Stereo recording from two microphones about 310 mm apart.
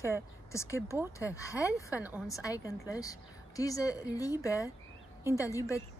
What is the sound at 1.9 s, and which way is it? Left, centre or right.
Speech, centre.